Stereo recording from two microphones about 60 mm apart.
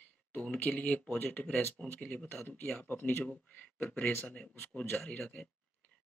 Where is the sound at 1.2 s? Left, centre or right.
Left.